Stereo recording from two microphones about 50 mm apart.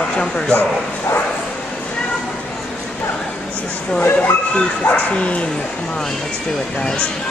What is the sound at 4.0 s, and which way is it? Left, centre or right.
Speech, left.